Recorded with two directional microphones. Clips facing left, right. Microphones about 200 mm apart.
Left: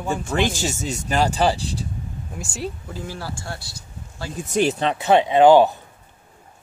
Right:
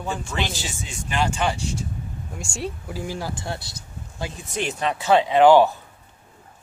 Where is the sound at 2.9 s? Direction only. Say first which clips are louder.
Right 2 dB; 10° right (ahead or behind).